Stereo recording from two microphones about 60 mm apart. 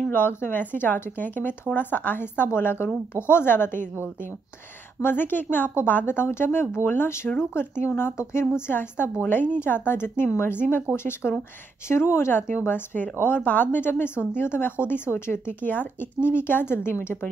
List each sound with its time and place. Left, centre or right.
0.1 s speech: left
5.0 s speech: left
11.2 s speech: left
11.9 s speech: left